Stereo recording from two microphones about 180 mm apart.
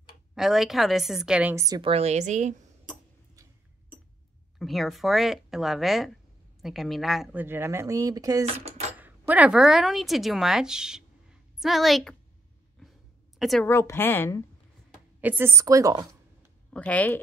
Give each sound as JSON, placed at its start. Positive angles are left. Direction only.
{"t": 0.3, "sound": "speech", "side_deg": 0}
{"t": 1.8, "sound": "a woman's voice", "side_deg": -35}
{"t": 4.6, "sound": "speech", "side_deg": 0}
{"t": 7.4, "sound": "speech", "side_deg": -15}
{"t": 8.9, "sound": "speech", "side_deg": -10}
{"t": 13.4, "sound": "a woman's voice", "side_deg": 0}
{"t": 13.7, "sound": "a woman's voice", "side_deg": 15}
{"t": 15.1, "sound": "a woman's voice", "side_deg": -10}
{"t": 16.7, "sound": "a woman's voice", "side_deg": 5}